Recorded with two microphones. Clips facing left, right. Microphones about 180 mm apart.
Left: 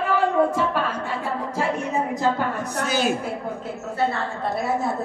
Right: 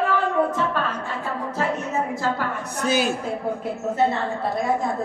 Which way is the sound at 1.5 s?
10° left (ahead or behind).